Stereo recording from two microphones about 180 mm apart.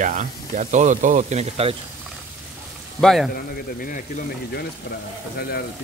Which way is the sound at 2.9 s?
Centre (ahead or behind).